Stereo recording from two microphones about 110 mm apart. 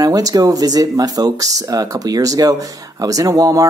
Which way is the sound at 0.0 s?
35° right (ahead or behind).